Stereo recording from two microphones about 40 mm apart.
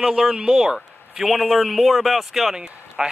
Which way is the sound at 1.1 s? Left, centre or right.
Centre.